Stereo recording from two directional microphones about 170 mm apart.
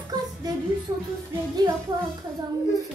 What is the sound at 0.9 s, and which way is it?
Music, 20° right (ahead or behind).